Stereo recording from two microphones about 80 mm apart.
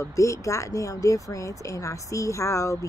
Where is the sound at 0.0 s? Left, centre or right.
Left.